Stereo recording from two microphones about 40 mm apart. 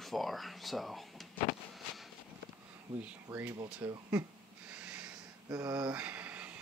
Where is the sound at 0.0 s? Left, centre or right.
Centre.